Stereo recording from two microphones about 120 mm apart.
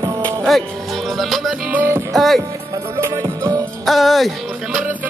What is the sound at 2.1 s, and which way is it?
Music, centre (ahead or behind).